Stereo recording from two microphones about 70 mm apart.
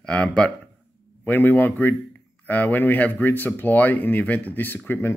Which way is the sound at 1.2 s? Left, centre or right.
Left.